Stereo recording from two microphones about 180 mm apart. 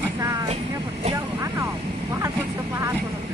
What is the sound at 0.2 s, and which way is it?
Vehicle, 15° right (ahead or behind).